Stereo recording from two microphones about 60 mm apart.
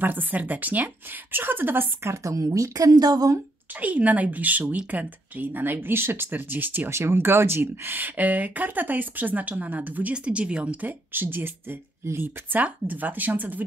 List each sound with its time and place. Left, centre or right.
0.0 s speech: right
2.0 s speech: right
3.8 s speech: right
6.9 s speech: right
12.8 s speech: right